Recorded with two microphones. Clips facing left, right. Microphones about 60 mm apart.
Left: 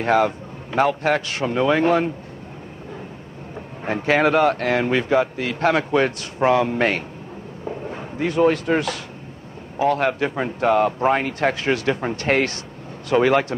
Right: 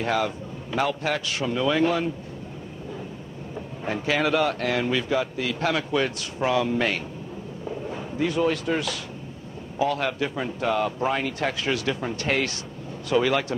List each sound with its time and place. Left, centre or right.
0.0 s speech: left
3.8 s speech: left